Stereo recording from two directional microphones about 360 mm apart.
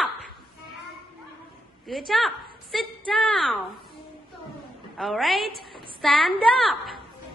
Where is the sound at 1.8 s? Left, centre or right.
Centre.